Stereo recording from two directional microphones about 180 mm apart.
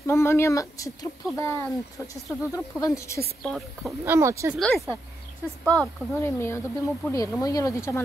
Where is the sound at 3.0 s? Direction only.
15° left (ahead or behind).